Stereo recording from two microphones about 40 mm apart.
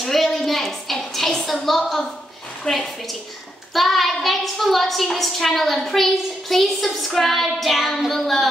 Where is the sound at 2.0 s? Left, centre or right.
Centre.